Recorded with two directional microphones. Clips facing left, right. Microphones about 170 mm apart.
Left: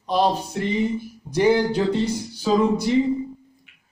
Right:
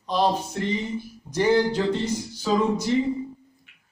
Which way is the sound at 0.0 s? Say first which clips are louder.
Left 2 dB; 10° left (ahead or behind).